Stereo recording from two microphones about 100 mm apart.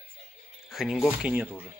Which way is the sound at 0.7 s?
Centre (ahead or behind).